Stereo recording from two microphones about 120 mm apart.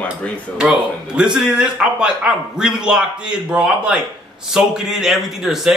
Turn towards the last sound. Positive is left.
turn(degrees=-5)  # may be behind; listen again after turning